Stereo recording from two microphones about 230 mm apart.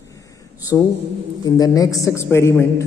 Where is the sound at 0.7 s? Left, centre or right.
Centre.